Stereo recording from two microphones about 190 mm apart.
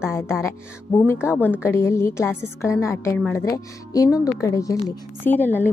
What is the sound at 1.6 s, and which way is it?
A woman's voice, 15° left (ahead or behind).